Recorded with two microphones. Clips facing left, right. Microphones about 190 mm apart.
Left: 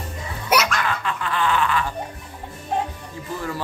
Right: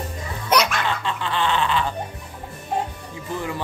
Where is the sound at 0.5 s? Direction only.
10° left (ahead or behind).